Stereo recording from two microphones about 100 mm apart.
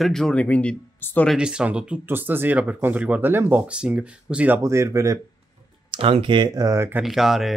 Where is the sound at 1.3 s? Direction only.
10° right (ahead or behind).